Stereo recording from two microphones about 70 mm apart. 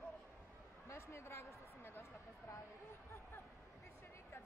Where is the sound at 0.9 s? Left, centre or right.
Left.